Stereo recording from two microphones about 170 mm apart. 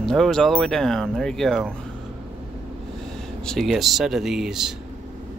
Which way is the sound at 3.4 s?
Centre (ahead or behind).